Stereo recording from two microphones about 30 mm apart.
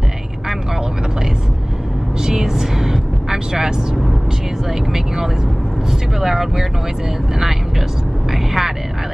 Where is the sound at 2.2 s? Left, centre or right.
Centre.